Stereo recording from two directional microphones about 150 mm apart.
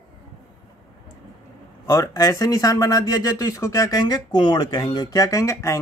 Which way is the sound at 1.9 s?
20° left (ahead or behind).